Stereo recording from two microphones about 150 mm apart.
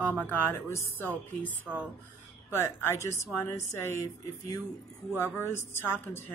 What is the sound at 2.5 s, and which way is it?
Speech, 15° left (ahead or behind).